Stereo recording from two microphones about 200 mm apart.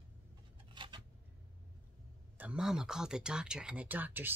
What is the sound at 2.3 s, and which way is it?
Speech, 5° right (ahead or behind).